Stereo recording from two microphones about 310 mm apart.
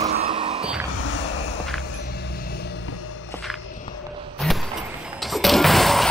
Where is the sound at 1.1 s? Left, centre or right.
Left.